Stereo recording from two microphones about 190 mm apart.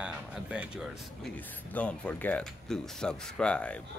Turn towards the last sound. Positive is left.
turn(degrees=5)  # may be behind; listen again after turning